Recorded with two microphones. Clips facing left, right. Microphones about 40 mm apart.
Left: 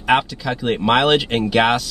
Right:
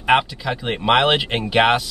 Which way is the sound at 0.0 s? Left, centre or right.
Centre.